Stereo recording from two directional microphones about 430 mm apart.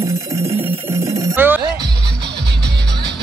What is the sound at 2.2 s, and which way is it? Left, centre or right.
Music, right.